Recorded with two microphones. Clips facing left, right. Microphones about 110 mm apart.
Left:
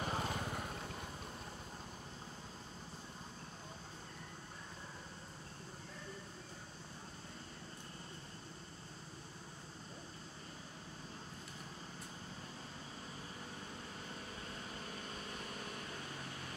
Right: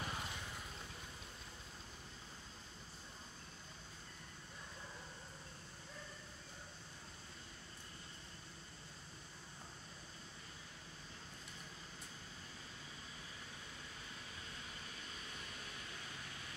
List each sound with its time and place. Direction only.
0.0 s vehicle: 45° left (ahead or behind)